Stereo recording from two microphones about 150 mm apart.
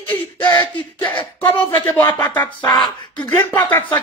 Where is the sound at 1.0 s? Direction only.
30° left (ahead or behind).